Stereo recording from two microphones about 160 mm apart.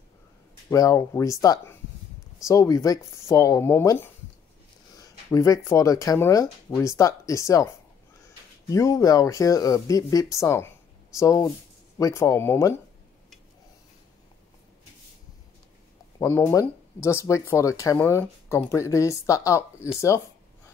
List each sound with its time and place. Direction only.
0.7 s speech: 20° left (ahead or behind)
4.9 s a sound: 20° left (ahead or behind)
5.7 s speech: 20° left (ahead or behind)
16.2 s speech: 15° left (ahead or behind)